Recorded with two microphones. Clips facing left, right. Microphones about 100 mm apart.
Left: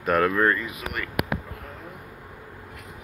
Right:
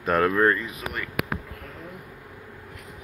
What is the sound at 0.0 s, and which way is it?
Speech, centre (ahead or behind).